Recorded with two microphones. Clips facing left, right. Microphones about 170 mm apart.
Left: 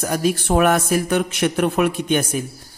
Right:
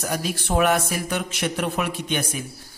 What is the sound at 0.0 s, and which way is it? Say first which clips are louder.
A man's voice: left 7 dB; 50° left (ahead or behind).